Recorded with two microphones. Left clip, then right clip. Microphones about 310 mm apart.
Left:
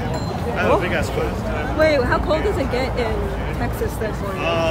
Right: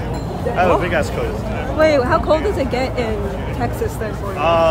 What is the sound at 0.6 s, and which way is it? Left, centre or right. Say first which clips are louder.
Speech: right 3 dB; centre.